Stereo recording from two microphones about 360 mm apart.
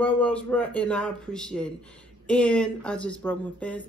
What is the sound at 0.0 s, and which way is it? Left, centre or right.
Speech, centre.